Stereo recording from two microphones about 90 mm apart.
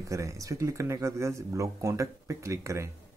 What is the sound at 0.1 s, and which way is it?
Speech, 35° right (ahead or behind).